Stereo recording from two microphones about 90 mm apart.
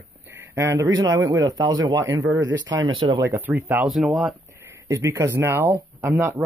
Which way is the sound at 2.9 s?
65° right (ahead or behind).